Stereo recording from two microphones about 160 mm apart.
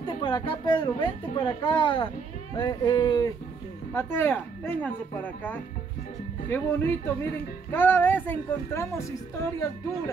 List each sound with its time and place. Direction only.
0.2 s a woman's voice: 30° left (ahead or behind)